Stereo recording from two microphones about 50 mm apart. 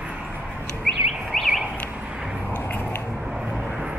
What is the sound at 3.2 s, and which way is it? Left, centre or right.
Vehicle, centre.